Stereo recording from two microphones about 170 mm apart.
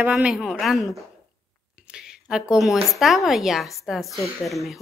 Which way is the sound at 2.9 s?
Centre (ahead or behind).